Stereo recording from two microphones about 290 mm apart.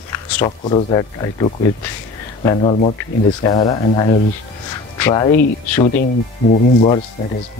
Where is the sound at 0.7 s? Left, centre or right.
Centre.